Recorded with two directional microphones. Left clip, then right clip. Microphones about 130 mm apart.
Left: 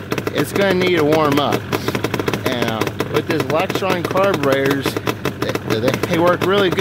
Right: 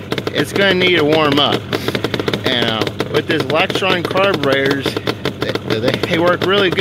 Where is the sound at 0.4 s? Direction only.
20° left (ahead or behind).